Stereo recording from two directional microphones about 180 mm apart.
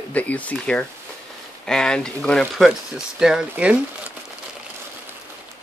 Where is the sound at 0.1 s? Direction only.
10° left (ahead or behind).